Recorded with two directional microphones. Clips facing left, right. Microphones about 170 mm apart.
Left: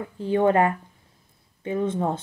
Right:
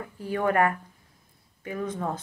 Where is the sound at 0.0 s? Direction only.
25° left (ahead or behind).